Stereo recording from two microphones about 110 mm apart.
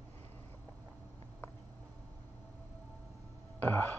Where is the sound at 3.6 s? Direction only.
15° left (ahead or behind).